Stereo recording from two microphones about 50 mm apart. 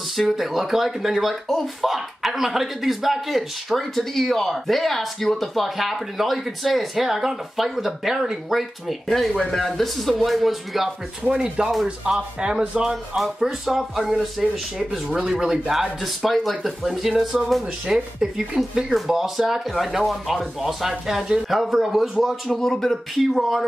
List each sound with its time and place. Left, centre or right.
0.3 s speech: centre
11.2 s speech: centre
17.8 s speech: centre
22.5 s speech: centre